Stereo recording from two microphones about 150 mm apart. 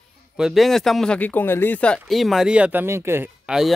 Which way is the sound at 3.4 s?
5° right (ahead or behind).